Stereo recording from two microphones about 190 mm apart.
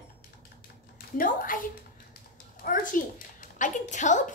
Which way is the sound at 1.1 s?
45° left (ahead or behind).